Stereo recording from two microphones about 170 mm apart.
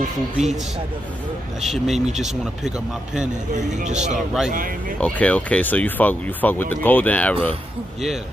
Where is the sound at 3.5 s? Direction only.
45° right (ahead or behind).